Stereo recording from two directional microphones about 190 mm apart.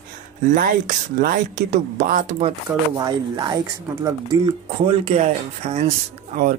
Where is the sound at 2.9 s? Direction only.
20° right (ahead or behind).